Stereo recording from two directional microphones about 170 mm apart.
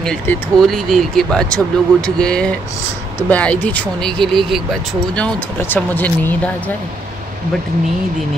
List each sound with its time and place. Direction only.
0.0 s speech: 5° left (ahead or behind)
5.7 s speech: 10° left (ahead or behind)